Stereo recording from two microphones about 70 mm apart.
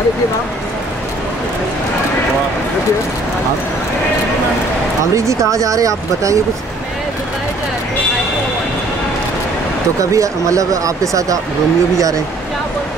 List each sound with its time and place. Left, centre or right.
5.1 s speech: right
9.9 s speech: right